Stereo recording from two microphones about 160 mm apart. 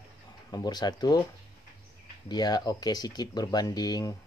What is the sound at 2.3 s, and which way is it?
Speech, 25° left (ahead or behind).